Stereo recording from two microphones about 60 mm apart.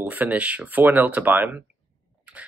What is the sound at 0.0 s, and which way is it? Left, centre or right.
Speech, right.